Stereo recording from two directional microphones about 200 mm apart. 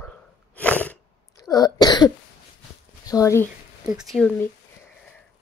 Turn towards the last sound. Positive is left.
turn(degrees=0)  # may be behind; listen again after turning